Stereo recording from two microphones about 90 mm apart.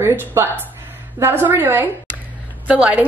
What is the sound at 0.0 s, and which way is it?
A woman's voice, 25° right (ahead or behind).